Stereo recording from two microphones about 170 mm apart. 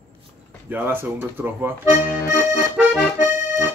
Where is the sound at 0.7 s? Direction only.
10° right (ahead or behind).